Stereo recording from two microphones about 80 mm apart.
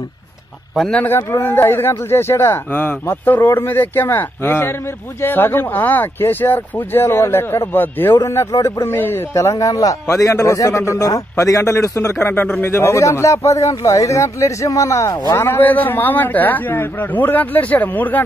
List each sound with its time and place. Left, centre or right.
0.7 s speech: centre
1.0 s speech: left
9.3 s a man's voice: left
12.4 s speech: centre
12.7 s a man's voice: left
15.4 s speech: left